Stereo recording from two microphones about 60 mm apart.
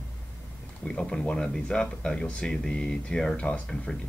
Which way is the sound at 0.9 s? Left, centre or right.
Centre.